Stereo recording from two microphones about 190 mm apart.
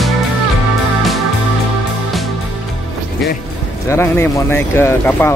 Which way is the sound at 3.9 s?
15° left (ahead or behind).